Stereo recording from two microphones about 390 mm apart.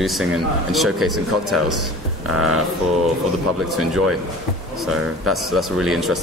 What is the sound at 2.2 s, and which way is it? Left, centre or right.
Speech, right.